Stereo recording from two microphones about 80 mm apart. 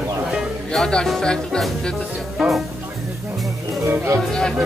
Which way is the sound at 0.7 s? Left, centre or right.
Centre.